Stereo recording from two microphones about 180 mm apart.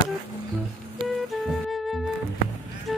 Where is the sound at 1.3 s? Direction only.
Centre (ahead or behind).